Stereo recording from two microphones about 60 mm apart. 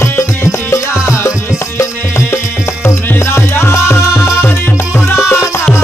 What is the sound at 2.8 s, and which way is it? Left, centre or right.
Music, left.